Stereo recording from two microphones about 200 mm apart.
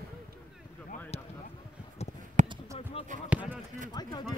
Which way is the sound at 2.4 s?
35° right (ahead or behind).